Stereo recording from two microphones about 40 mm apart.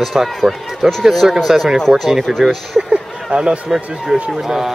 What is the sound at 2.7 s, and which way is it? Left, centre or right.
Speech, right.